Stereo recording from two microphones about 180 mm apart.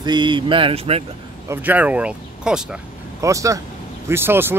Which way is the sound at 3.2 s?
15° right (ahead or behind).